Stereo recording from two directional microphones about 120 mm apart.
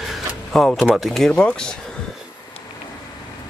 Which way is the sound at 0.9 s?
Centre (ahead or behind).